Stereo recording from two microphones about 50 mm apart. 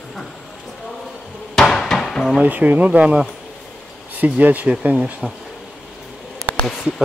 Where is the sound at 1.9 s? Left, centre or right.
Centre.